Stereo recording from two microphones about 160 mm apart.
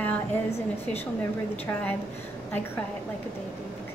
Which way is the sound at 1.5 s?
10° left (ahead or behind).